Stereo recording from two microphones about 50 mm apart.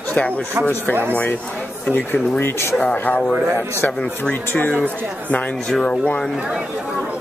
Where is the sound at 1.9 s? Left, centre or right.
Left.